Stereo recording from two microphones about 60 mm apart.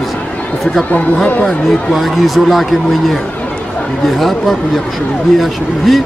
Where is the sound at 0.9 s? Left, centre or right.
Left.